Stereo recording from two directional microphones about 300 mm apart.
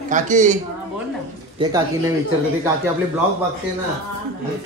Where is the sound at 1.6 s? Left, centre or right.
Centre.